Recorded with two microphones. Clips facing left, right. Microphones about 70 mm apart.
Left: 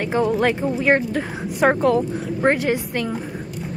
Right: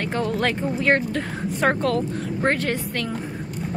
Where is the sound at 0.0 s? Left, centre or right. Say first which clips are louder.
Left 5 dB; centre.